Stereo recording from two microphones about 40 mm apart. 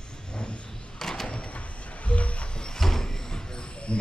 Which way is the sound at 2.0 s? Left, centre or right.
Left.